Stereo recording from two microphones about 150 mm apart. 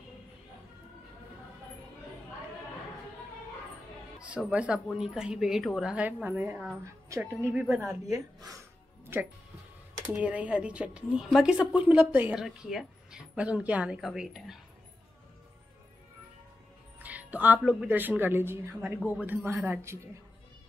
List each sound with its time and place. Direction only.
4.5 s a woman's voice: 10° right (ahead or behind)
7.9 s speech: 20° right (ahead or behind)
9.0 s music: 15° right (ahead or behind)
10.0 s speech: 10° right (ahead or behind)
17.0 s music: 10° right (ahead or behind)
17.6 s speech: 5° right (ahead or behind)